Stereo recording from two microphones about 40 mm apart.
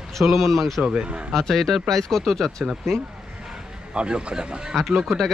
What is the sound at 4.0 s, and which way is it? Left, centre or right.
Speech, right.